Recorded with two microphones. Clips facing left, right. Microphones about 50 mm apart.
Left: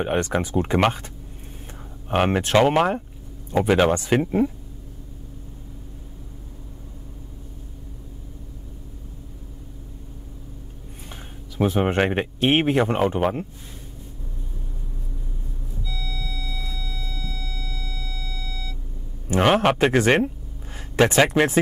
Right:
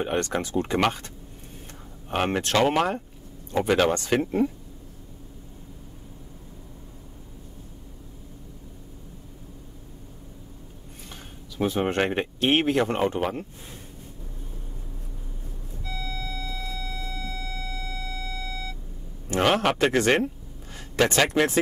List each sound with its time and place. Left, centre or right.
0.0 s speech: centre
11.6 s speech: left
15.8 s a sound: right
19.3 s speech: centre